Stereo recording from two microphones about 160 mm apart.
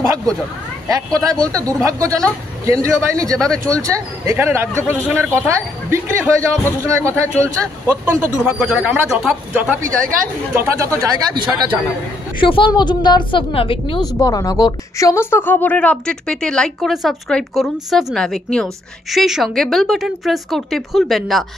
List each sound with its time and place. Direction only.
0.0 s a sound: 20° right (ahead or behind)
0.8 s speech: 20° right (ahead or behind)
3.3 s a woman's voice: 5° left (ahead or behind)
3.7 s speech: 20° right (ahead or behind)
11.0 s speech: 25° right (ahead or behind)
12.4 s a woman's voice: 30° left (ahead or behind); by 21.5 s centre (ahead or behind)